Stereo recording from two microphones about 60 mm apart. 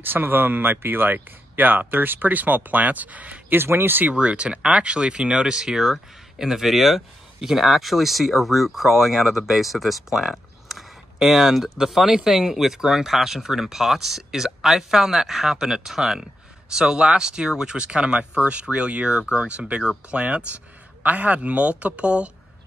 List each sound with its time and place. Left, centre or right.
0.0 s speech: right
3.5 s speech: right
4.1 s speech: right